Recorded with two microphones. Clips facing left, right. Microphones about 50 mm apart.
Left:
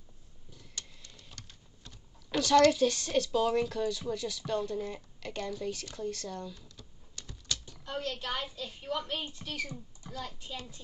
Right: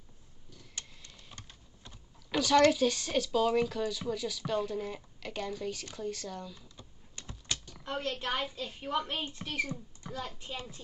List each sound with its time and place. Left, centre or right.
1.1 s typing: centre
4.1 s speech: centre
6.5 s typing: right
7.7 s speech: right
9.7 s a sound: right
10.2 s speech: right